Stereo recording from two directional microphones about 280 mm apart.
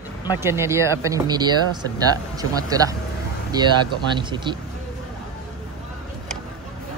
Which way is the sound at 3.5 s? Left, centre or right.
Centre.